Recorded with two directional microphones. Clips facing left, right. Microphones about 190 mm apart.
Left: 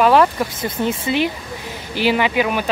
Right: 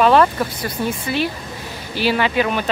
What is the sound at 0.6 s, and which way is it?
Speech, 20° left (ahead or behind).